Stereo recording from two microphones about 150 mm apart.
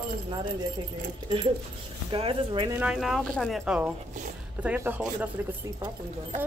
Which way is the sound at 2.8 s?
5° right (ahead or behind).